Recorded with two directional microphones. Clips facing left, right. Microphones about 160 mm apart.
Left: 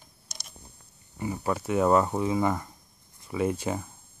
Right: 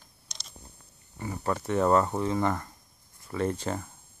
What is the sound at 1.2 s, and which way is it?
Speech, 10° left (ahead or behind).